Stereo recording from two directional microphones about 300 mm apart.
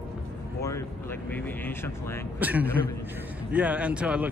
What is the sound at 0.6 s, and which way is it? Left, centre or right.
Vehicle, centre.